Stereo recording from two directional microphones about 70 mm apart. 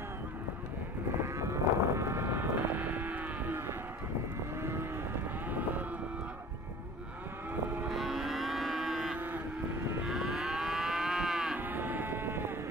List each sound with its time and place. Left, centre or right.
1.2 s livestock: right
4.6 s vehicle: right
5.5 s livestock: right
7.9 s livestock: centre
9.1 s vehicle: right
10.0 s moo: centre
11.5 s livestock: right